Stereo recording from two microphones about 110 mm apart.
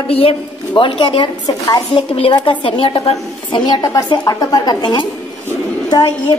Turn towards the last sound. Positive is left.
turn(degrees=40)  # may be behind; listen again after turning